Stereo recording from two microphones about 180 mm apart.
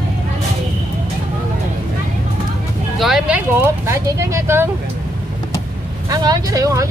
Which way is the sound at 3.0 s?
5° right (ahead or behind).